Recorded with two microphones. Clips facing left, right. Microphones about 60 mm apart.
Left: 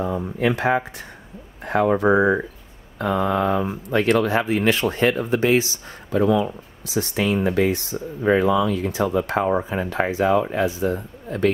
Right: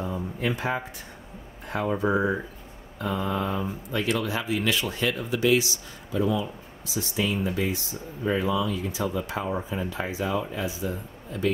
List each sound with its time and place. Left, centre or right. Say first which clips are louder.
0.0 s speech: left 7 dB; left
6.1 s speech: left 7 dB; left